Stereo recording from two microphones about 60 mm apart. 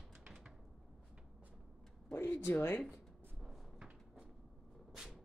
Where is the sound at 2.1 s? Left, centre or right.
Left.